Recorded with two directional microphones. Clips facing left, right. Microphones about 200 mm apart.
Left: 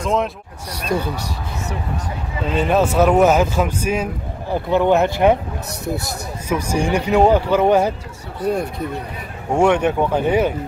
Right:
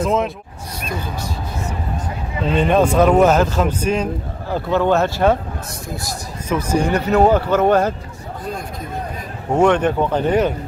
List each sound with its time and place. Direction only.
0.0 s speech: centre (ahead or behind)
0.7 s speech: 70° left (ahead or behind)
2.5 s speech: 5° left (ahead or behind)
6.5 s speech: 10° left (ahead or behind)
8.4 s speech: 65° left (ahead or behind)
9.6 s speech: 10° left (ahead or behind)